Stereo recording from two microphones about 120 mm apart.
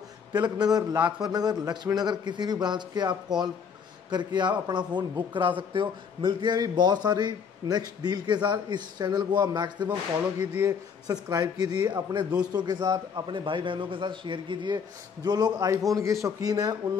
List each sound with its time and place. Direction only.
0.3 s a man's voice: 35° right (ahead or behind)
10.4 s speech: 15° right (ahead or behind)
10.7 s a man's voice: 30° right (ahead or behind)